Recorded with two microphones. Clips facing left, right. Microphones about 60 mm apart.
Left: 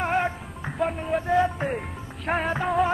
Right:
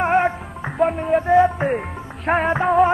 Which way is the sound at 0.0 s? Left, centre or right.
Right.